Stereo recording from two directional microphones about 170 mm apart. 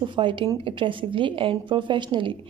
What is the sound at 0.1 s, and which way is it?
A woman's voice, 30° right (ahead or behind).